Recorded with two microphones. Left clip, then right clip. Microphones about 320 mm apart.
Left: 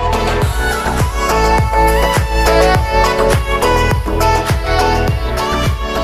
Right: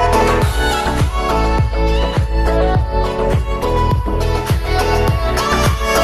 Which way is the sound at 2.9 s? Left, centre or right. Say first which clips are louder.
Left 6 dB; left.